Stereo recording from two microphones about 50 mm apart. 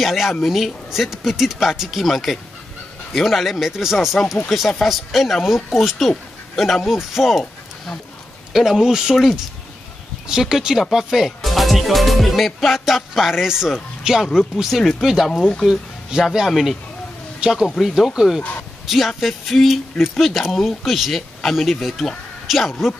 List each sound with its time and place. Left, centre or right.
0.0 s speech: centre
8.5 s speech: centre
16.4 s speech: centre
17.4 s speech: centre
17.8 s speech: centre